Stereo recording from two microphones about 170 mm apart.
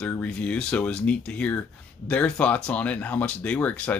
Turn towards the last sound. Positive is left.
turn(degrees=10)  # may be behind; listen again after turning